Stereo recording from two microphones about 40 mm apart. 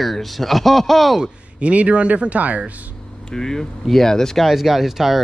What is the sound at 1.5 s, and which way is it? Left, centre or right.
Speech, right.